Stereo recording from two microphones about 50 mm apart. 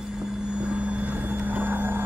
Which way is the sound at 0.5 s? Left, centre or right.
Right.